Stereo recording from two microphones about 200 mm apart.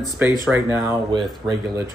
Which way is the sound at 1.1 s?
20° right (ahead or behind).